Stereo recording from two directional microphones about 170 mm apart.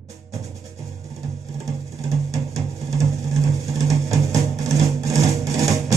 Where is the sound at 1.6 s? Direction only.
20° right (ahead or behind).